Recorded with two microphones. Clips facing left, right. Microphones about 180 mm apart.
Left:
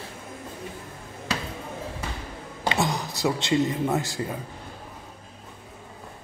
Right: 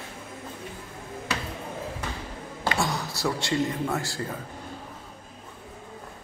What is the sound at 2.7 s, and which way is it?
A man's voice, 20° left (ahead or behind).